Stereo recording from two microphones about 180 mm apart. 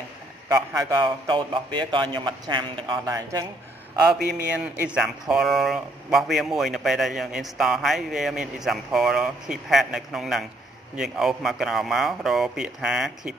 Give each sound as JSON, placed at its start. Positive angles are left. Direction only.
{"t": 0.5, "sound": "a man's voice", "side_deg": -20}
{"t": 4.6, "sound": "a man's voice", "side_deg": -5}